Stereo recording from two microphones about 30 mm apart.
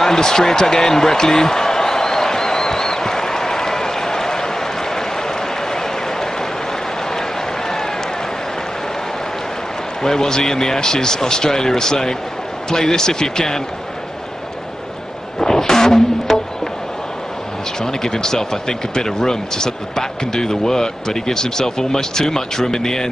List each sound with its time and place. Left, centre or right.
0.0 s basketball bounce: centre
7.1 s applause: centre
10.0 s speech: centre
15.3 s music: centre
17.7 s speech: centre